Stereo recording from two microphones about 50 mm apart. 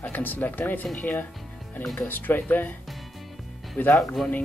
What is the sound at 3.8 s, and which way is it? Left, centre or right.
Speech, left.